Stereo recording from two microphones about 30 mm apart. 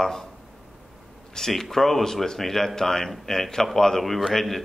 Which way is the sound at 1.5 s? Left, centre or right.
Centre.